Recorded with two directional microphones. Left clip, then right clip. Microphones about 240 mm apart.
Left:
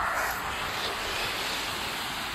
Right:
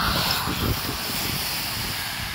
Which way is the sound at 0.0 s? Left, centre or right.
Right.